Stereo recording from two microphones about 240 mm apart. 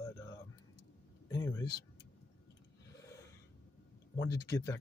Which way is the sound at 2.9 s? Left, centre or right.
Centre.